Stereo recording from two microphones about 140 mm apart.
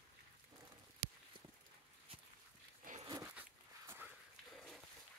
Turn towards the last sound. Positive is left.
turn(degrees=-15)  # may be behind; listen again after turning